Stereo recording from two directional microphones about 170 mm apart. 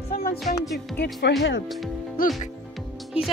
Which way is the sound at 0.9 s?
80° left.